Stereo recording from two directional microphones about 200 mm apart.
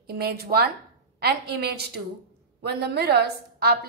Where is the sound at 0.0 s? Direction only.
50° right (ahead or behind).